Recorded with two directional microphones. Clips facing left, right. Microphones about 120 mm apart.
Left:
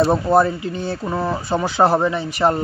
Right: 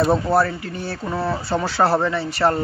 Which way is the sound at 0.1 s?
20° left (ahead or behind).